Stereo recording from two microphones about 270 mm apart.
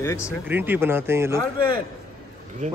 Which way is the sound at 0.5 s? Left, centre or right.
Centre.